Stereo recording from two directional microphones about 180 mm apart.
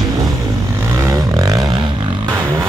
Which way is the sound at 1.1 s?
20° right (ahead or behind).